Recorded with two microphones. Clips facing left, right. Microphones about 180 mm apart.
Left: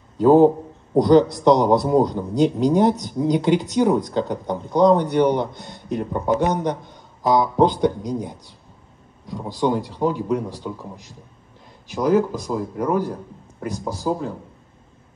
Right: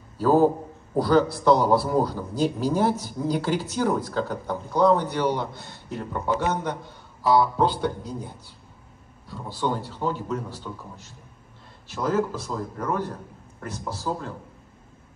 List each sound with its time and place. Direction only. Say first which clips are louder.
0.2 s a man's voice: left 6 dB; 20° left (ahead or behind)
11.9 s a man's voice: left 6 dB; 15° left (ahead or behind)